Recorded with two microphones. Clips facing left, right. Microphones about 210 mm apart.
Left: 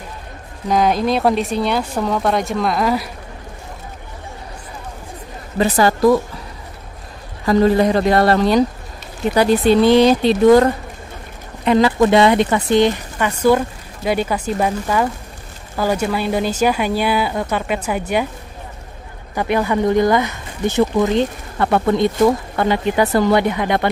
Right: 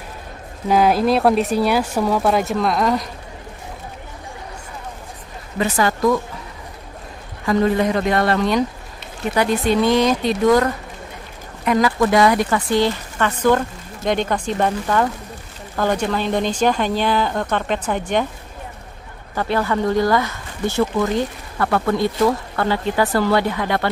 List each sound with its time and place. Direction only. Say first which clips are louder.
0.7 s speech: right 1 dB; 5° right (ahead or behind)
5.6 s speech: left 4 dB; 35° left (ahead or behind)
7.4 s speech: left 4 dB; 35° left (ahead or behind); by 18.2 s 10° left (ahead or behind)
19.3 s speech: left 2 dB; 15° left (ahead or behind)